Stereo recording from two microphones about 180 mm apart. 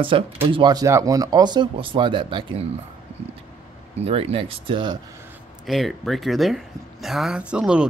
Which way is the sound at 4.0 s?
30° right (ahead or behind).